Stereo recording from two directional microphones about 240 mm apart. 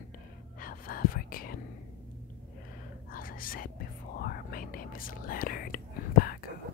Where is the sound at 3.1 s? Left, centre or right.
Left.